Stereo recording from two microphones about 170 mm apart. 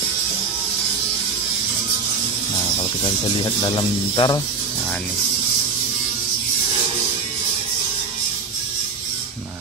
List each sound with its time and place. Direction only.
3.7 s speech: 25° left (ahead or behind)